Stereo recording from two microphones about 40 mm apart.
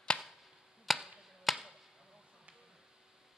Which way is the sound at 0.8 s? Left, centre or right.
Centre.